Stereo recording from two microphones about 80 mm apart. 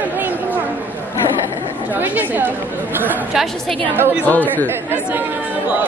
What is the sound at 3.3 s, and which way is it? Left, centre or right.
Speech, centre.